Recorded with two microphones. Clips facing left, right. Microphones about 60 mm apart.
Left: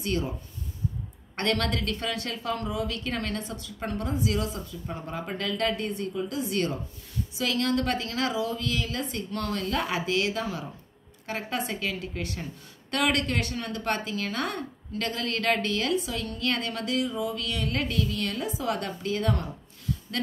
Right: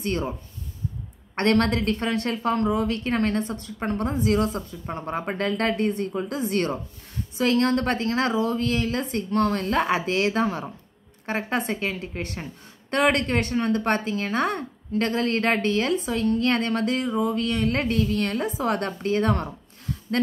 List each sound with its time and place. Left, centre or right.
0.0 s a woman's voice: right
1.3 s a woman's voice: right